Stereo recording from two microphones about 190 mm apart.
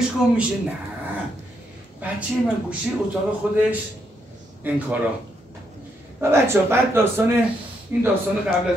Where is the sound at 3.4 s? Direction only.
5° right (ahead or behind).